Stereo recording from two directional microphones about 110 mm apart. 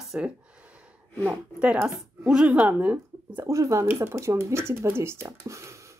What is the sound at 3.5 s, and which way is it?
Speech, 30° right (ahead or behind).